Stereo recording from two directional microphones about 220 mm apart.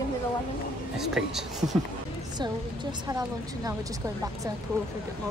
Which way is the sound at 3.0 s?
15° right (ahead or behind).